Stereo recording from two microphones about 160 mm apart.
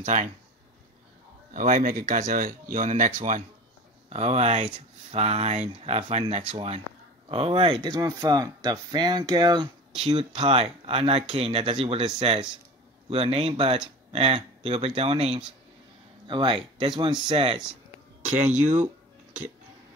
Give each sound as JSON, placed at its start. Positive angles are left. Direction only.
{"t": 0.0, "sound": "speech", "side_deg": -50}
{"t": 1.5, "sound": "speech", "side_deg": -55}